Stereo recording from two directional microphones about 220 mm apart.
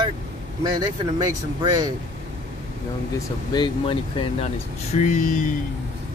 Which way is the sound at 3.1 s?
20° left (ahead or behind).